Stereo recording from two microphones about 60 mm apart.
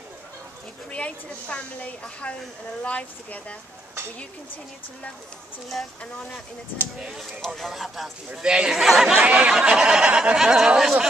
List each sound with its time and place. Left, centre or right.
0.9 s a woman's voice: left
7.0 s speech: centre
8.4 s speech: centre
9.1 s speech: right